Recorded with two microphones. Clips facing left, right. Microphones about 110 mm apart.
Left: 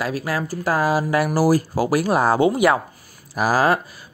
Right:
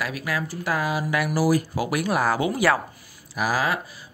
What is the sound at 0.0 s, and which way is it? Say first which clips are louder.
Speech: left 4 dB; 35° left (ahead or behind).